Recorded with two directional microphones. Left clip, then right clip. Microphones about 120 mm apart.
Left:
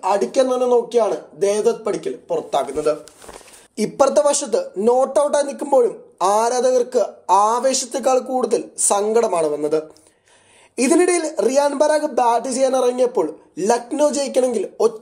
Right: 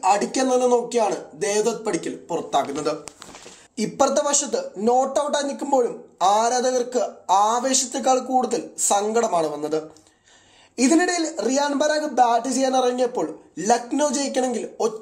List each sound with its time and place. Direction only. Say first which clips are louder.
0.0 s speech: left 3 dB; 35° left (ahead or behind)